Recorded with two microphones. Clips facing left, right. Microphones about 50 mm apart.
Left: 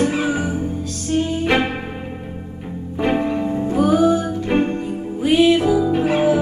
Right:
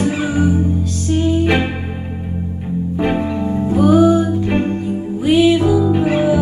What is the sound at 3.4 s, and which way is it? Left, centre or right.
Music, centre.